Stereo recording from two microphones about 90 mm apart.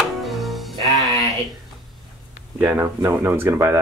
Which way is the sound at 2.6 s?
20° right (ahead or behind).